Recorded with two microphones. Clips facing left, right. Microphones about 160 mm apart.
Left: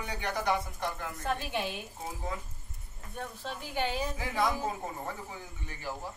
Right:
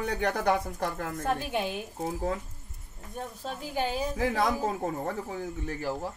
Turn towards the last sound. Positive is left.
turn(degrees=-50)  # may be behind; listen again after turning